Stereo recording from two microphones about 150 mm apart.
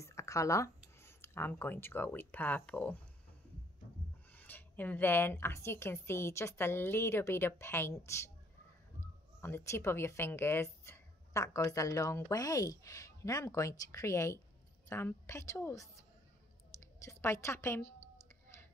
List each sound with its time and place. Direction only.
0.0 s speech: 20° left (ahead or behind)
4.3 s speech: 10° left (ahead or behind)
17.0 s a woman's voice: 20° left (ahead or behind)